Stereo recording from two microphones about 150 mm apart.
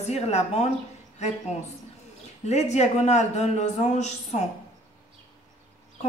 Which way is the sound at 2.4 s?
45° left (ahead or behind).